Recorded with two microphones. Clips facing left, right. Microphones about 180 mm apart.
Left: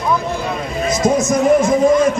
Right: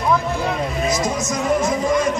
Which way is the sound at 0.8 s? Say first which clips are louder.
Left 9 dB; 50° left (ahead or behind).